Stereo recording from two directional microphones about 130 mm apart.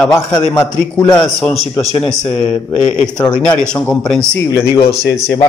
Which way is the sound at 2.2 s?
35° left (ahead or behind).